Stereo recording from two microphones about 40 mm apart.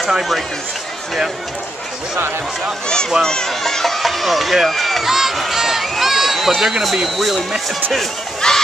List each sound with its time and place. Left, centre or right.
0.1 s speech: centre
3.2 s speech: centre
8.4 s crowd: centre